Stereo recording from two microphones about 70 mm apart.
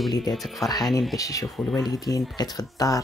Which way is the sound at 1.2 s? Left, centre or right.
Left.